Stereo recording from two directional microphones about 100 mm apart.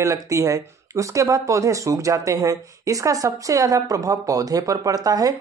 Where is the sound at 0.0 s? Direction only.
30° right (ahead or behind).